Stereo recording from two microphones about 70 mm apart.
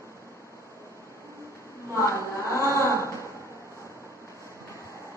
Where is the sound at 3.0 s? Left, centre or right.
Left.